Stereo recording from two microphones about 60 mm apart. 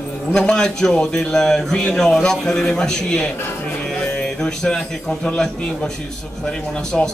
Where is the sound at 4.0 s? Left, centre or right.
Centre.